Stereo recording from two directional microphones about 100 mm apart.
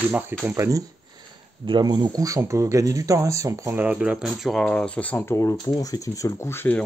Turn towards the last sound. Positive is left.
turn(degrees=25)  # may be behind; listen again after turning